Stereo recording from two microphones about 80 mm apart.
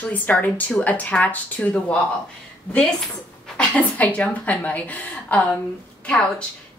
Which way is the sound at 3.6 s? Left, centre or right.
Centre.